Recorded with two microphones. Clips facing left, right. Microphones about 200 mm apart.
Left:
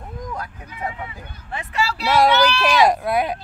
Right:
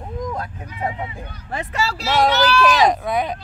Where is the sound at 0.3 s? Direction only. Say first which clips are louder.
Right 3 dB; 25° right (ahead or behind).